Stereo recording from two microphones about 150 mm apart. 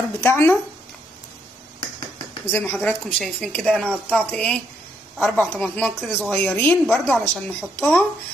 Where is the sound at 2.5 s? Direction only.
15° left (ahead or behind).